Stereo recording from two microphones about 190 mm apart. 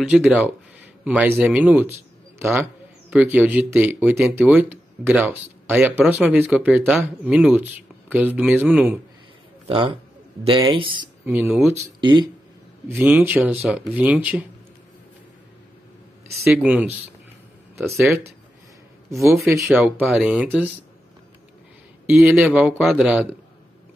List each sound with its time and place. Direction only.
0.1 s a man's voice: 5° right (ahead or behind)
9.7 s a man's voice: 25° right (ahead or behind)
11.2 s speech: 10° right (ahead or behind)
12.0 s speech: 25° right (ahead or behind)
12.8 s speech: 10° right (ahead or behind)
16.5 s speech: 5° right (ahead or behind)
19.6 s speech: 5° right (ahead or behind)
22.2 s speech: 5° right (ahead or behind)